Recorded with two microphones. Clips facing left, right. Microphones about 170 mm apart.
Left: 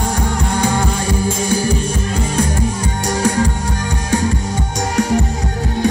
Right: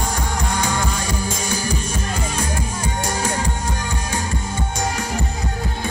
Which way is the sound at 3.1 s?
70° left (ahead or behind).